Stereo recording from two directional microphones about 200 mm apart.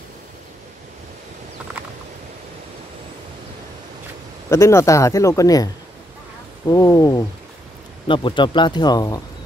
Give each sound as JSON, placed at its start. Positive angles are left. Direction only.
{"t": 4.5, "sound": "speech", "side_deg": 15}
{"t": 6.7, "sound": "speech", "side_deg": 15}